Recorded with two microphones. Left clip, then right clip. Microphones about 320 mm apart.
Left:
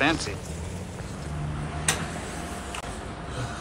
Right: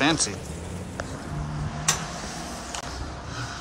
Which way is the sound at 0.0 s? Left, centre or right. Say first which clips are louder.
Right 1 dB; centre.